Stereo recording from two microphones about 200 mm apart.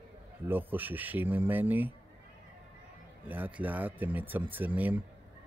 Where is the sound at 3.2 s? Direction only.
10° right (ahead or behind).